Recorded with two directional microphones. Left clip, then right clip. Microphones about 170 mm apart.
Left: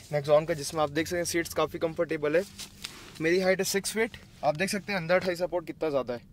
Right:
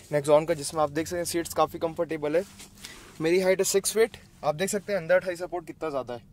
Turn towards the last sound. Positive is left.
turn(degrees=50)  # may be behind; listen again after turning